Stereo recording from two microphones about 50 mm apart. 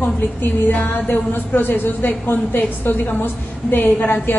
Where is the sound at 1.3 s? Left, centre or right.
Left.